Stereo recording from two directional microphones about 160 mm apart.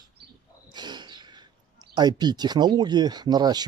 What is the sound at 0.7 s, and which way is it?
Wild animals, 30° right (ahead or behind).